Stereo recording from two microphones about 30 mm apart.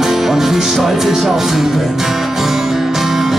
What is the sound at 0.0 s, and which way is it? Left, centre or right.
Music, centre.